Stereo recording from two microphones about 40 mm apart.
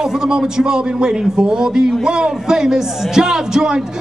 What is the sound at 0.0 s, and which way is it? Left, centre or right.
A man's voice, centre.